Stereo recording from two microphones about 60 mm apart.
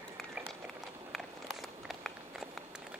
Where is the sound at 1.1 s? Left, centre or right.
Centre.